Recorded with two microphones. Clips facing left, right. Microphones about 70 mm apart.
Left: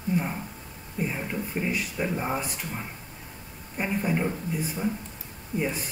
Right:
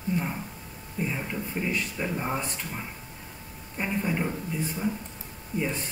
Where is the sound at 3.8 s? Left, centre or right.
Centre.